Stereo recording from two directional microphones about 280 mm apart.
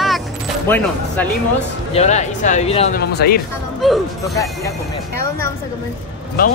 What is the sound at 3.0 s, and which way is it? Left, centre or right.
Speech, left.